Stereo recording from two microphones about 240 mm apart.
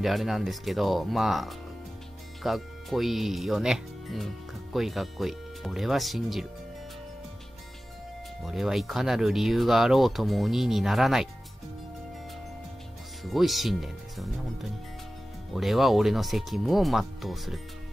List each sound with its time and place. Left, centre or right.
0.0 s speech: centre
8.5 s speech: centre
13.2 s speech: centre